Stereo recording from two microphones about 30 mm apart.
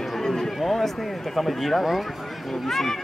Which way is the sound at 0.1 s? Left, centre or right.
Centre.